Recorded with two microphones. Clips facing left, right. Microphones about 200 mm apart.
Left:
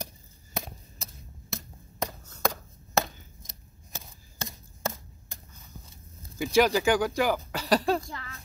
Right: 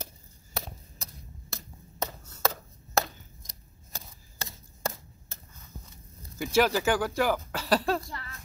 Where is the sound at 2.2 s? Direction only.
10° right (ahead or behind).